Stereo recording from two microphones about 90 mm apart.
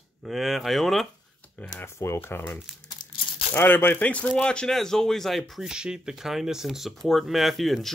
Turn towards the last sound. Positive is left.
turn(degrees=0)  # may be behind; listen again after turning